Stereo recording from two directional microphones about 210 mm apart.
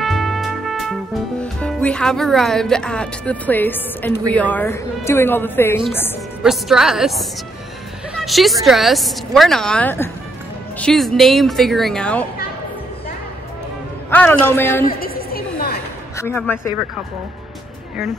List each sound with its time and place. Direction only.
0.0 s music: centre (ahead or behind)
1.4 s a woman's voice: 5° left (ahead or behind)
6.4 s speech: centre (ahead or behind)
14.1 s a woman's voice: 10° left (ahead or behind)
14.9 s a sound: 45° left (ahead or behind)
16.2 s a woman's voice: 10° left (ahead or behind)